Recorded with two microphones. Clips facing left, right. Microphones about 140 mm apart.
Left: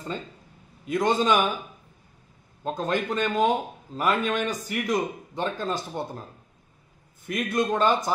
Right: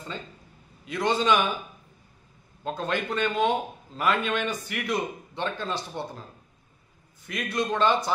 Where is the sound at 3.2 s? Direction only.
40° left (ahead or behind).